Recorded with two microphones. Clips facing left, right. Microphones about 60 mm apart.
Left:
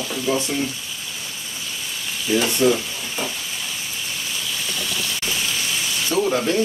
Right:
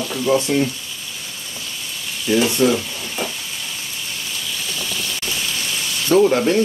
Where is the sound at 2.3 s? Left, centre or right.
Centre.